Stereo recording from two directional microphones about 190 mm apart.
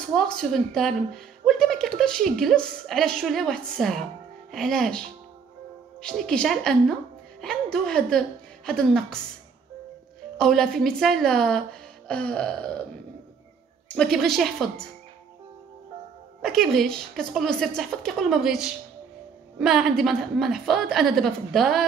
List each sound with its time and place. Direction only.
0.2 s a woman's voice: centre (ahead or behind)
10.3 s a woman's voice: 5° left (ahead or behind)
13.8 s a woman's voice: 5° left (ahead or behind)
16.3 s a woman's voice: centre (ahead or behind)